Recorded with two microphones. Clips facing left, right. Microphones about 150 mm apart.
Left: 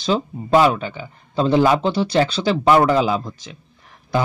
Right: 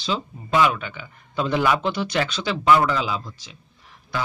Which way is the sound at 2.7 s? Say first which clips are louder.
Left 7 dB; 50° left (ahead or behind).